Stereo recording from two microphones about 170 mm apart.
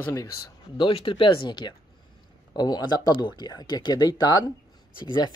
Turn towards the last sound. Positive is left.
turn(degrees=25)  # may be behind; listen again after turning